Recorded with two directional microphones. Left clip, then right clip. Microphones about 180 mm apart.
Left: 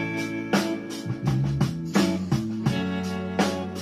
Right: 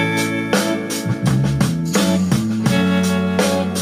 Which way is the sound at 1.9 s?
30° right (ahead or behind).